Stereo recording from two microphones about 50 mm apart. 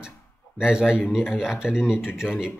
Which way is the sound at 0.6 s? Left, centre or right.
Centre.